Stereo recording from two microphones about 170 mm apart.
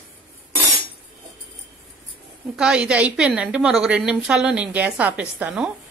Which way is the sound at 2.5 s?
5° right (ahead or behind).